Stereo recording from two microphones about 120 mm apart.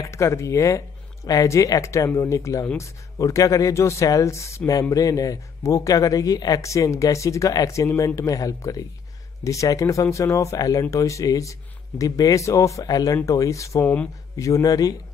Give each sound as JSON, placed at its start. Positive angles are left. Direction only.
{"t": 0.1, "sound": "a man's voice", "side_deg": 25}